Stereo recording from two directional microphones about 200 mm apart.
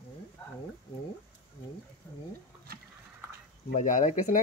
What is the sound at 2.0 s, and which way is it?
Speech, 10° left (ahead or behind).